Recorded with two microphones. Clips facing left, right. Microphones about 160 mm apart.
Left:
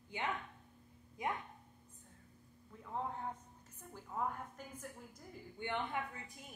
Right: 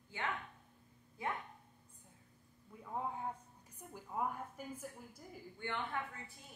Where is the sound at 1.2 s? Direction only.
15° left (ahead or behind).